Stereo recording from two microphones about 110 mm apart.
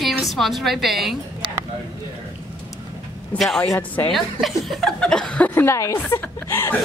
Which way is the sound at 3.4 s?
5° left (ahead or behind).